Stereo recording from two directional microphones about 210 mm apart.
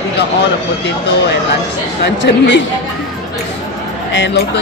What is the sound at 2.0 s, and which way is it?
Speech, 55° left (ahead or behind).